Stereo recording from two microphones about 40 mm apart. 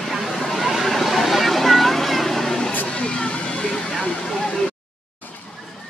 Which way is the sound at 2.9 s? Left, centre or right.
Left.